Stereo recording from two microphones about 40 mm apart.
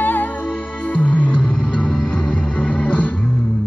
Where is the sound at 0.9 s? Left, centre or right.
Left.